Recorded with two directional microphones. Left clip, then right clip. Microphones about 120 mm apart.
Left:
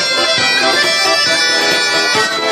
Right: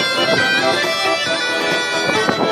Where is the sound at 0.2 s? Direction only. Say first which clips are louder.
Left 2 dB; 5° left (ahead or behind).